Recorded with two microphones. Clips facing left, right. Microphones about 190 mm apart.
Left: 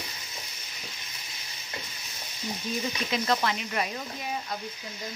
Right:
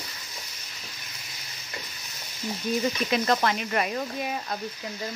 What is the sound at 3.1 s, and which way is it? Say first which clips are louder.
Speech: right 2 dB; 50° right (ahead or behind).